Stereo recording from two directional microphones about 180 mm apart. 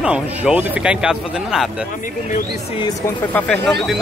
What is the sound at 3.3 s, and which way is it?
Speech, 5° left (ahead or behind).